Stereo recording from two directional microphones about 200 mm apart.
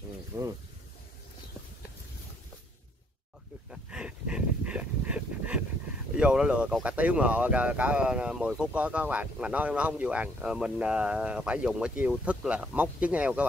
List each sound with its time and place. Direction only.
0.3 s speech: 15° right (ahead or behind)
3.7 s dog: 5° right (ahead or behind)
6.1 s speech: 5° right (ahead or behind)